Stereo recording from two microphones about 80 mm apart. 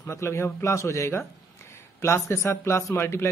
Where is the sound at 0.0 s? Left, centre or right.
Left.